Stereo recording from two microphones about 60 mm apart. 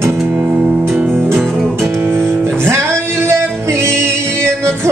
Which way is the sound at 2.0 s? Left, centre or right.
Right.